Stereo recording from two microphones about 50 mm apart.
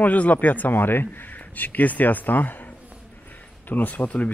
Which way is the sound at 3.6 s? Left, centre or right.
Left.